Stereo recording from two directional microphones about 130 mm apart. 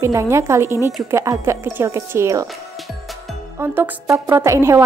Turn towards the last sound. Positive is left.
turn(degrees=-20)  # may be behind; listen again after turning